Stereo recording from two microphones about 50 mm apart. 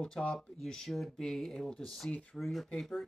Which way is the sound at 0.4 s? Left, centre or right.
Centre.